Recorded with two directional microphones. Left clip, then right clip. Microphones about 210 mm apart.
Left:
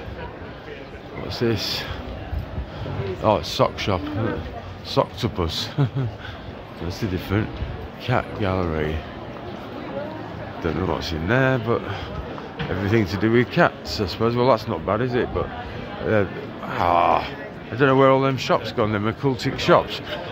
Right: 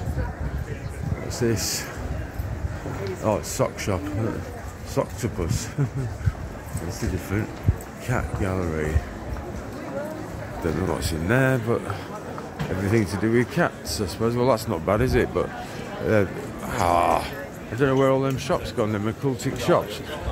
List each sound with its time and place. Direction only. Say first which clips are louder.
1.3 s speech: left 2 dB; 5° right (ahead or behind)
3.3 s speech: left 5 dB; centre (ahead or behind)
5.2 s speech: left 4 dB; 20° left (ahead or behind)
7.3 s speech: left 4 dB; 15° left (ahead or behind)
8.1 s speech: left 5 dB; 5° left (ahead or behind)
10.6 s speech: left 2 dB; centre (ahead or behind)
12.9 s speech: left 3 dB; centre (ahead or behind)
14.9 s speech: right 1 dB; 15° right (ahead or behind)
17.7 s speech: left 4 dB; 5° left (ahead or behind)